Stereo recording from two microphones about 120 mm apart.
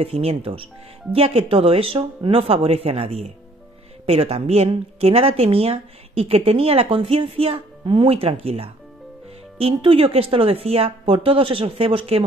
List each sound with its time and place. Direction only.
0.0 s a woman's voice: 55° right (ahead or behind)